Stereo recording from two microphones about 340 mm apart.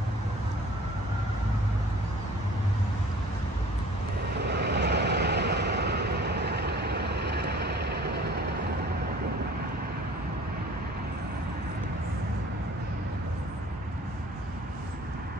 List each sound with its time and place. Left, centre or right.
4.4 s vehicle: right